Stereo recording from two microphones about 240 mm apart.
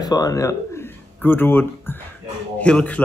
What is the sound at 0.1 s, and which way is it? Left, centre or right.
Speech, centre.